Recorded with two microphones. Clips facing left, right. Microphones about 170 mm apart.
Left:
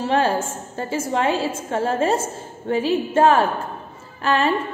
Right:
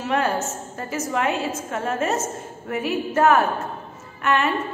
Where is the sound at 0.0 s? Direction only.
30° left (ahead or behind).